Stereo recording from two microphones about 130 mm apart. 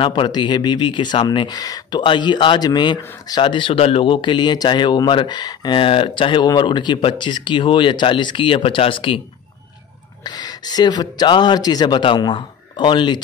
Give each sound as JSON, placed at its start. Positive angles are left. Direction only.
{"t": 0.0, "sound": "speech", "side_deg": 40}
{"t": 10.2, "sound": "speech", "side_deg": 30}